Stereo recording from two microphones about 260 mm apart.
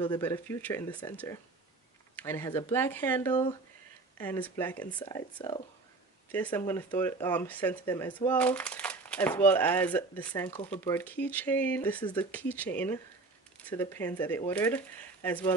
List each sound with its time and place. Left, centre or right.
0.0 s speech: centre
2.1 s speech: centre
5.4 s speech: left
6.3 s speech: centre